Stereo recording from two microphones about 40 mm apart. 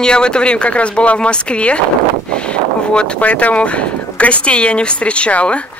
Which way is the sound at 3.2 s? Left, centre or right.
Left.